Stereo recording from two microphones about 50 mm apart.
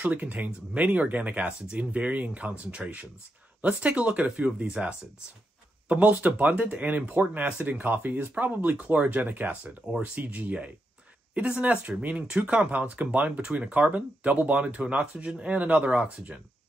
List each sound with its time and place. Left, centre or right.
0.0 s speech: right
5.9 s speech: right
11.6 s speech: right